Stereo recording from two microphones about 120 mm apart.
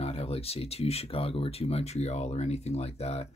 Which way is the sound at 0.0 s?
55° left (ahead or behind).